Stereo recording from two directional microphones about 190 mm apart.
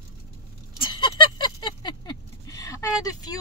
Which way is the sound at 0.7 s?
25° left (ahead or behind).